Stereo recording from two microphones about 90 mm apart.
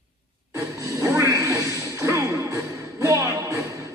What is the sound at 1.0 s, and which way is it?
Music, 35° right (ahead or behind).